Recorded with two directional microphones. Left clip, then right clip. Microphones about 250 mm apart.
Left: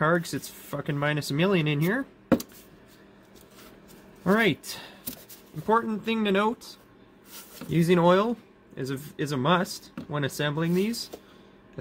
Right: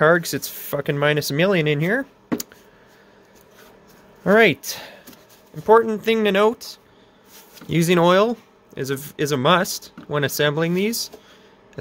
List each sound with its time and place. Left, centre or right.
0.0 s speech: right
4.2 s speech: right
7.7 s speech: right